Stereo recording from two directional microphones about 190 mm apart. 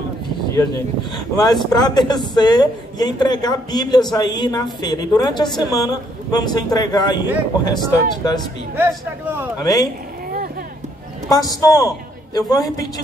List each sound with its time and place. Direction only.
1.3 s speech: 20° left (ahead or behind)
8.7 s a man's voice: 10° right (ahead or behind)
9.6 s speech: 20° left (ahead or behind)
11.2 s speech: 20° left (ahead or behind)